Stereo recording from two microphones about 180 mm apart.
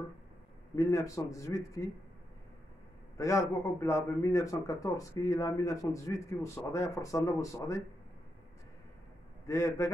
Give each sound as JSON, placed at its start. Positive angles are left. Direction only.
{"t": 0.7, "sound": "speech", "side_deg": 15}
{"t": 3.2, "sound": "speech", "side_deg": 15}
{"t": 9.5, "sound": "speech", "side_deg": 15}